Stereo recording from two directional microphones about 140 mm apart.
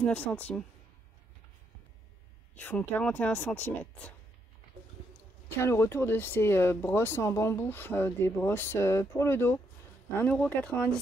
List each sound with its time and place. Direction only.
0.0 s speech: 10° left (ahead or behind)
2.5 s speech: 10° left (ahead or behind)
5.6 s speech: 20° left (ahead or behind)